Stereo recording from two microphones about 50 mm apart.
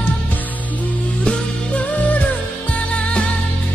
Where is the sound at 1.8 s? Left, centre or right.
Left.